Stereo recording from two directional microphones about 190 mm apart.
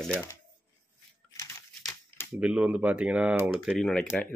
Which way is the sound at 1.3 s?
15° left (ahead or behind).